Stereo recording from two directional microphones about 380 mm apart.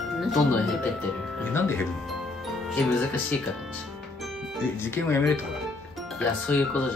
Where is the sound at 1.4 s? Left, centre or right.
Centre.